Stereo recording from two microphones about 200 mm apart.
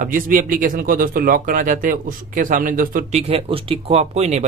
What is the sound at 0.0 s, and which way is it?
Speech, 40° right (ahead or behind).